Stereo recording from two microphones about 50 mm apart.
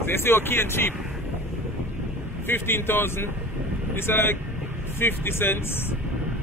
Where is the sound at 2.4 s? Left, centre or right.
Left.